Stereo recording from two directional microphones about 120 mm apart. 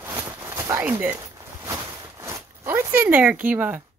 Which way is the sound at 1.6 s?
25° right (ahead or behind).